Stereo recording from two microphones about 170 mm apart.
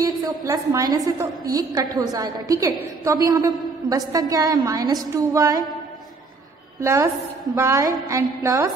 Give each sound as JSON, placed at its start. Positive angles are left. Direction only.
{"t": 0.0, "sound": "a woman's voice", "side_deg": -20}
{"t": 6.8, "sound": "a woman's voice", "side_deg": -15}